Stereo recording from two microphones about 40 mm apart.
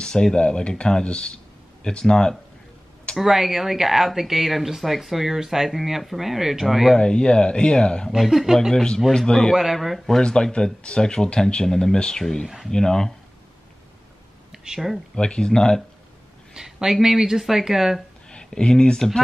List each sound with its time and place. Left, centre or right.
0.0 s speech: centre
3.2 s speech: centre
7.0 s speech: left
8.2 s speech: centre
9.1 s speech: centre
9.8 s speech: centre
10.2 s speech: left
14.5 s a sound: centre
15.1 s speech: left
16.5 s speech: centre
18.3 s speech: left